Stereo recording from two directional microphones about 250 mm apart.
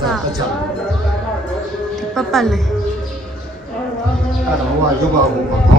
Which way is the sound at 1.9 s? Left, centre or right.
Centre.